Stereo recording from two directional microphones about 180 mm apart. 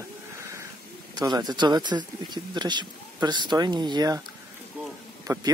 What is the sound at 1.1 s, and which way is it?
Speech, 20° right (ahead or behind).